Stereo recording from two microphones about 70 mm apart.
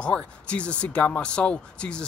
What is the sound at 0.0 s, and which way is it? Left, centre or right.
Speech, centre.